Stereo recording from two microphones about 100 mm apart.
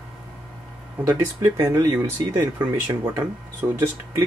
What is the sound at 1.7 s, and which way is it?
Speech, 30° right (ahead or behind).